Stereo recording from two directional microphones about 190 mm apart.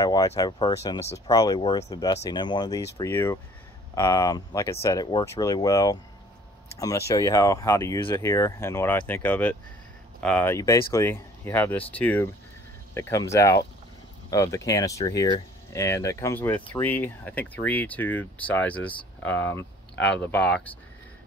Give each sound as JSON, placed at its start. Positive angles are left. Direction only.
{"t": 0.0, "sound": "speech", "side_deg": 20}